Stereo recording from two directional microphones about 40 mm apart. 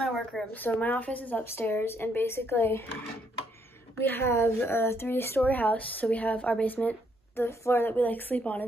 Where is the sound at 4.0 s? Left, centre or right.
Left.